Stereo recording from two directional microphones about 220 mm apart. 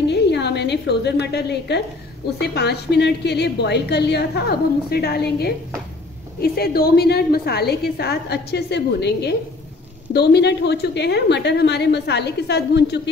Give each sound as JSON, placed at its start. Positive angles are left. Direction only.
{"t": 0.0, "sound": "a woman's voice", "side_deg": 50}